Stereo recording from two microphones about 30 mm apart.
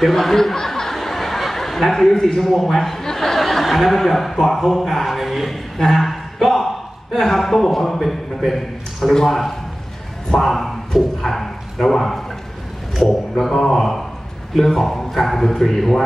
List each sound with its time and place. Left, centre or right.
0.0 s chuckle: centre
1.9 s a man's voice: centre
8.4 s a man's voice: centre
10.5 s a man's voice: centre